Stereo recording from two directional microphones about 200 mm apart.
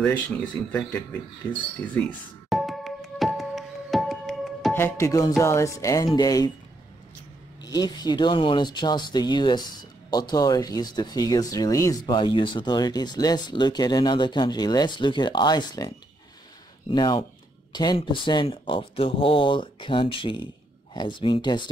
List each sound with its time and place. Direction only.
0.7 s music: 5° left (ahead or behind)
4.7 s music: 10° left (ahead or behind)
6.1 s speech: 20° left (ahead or behind)
7.6 s speech: 20° left (ahead or behind)
16.9 s speech: 20° left (ahead or behind)